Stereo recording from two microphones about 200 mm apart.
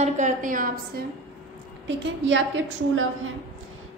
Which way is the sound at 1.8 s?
65° right (ahead or behind).